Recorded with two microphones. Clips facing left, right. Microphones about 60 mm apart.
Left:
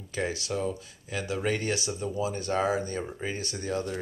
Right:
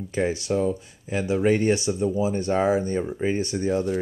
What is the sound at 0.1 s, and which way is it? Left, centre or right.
Speech, right.